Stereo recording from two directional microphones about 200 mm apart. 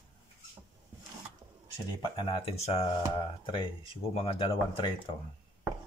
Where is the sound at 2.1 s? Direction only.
25° left (ahead or behind).